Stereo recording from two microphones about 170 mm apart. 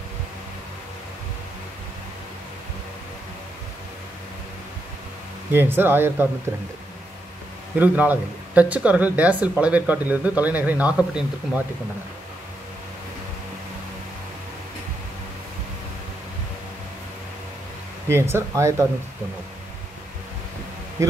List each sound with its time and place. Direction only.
5.5 s speech: 10° right (ahead or behind)
7.8 s speech: 10° right (ahead or behind)
18.0 s speech: 15° right (ahead or behind)
21.0 s a man's voice: 20° right (ahead or behind)